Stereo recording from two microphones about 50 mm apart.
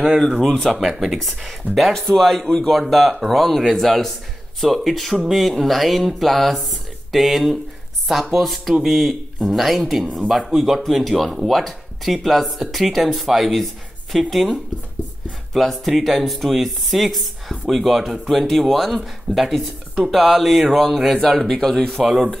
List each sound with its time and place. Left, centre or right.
0.2 s speech: centre
0.7 s speech: centre